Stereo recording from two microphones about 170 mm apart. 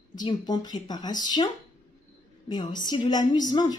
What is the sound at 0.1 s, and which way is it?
A woman's voice, 25° left (ahead or behind).